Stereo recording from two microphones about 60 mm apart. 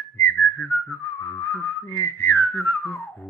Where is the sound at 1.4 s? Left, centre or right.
Left.